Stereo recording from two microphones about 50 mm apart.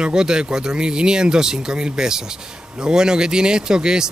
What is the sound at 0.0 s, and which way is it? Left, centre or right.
Speech, centre.